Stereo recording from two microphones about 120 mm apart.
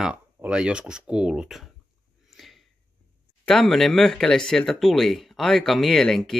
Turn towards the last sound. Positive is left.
turn(degrees=5)  # may be behind; listen again after turning